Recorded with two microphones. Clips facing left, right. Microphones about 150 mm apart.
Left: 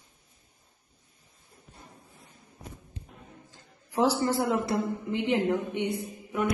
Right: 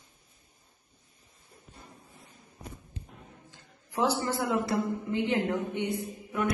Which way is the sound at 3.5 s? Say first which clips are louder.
Left 4 dB; 30° left (ahead or behind).